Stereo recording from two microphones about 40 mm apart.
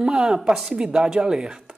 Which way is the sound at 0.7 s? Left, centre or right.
Right.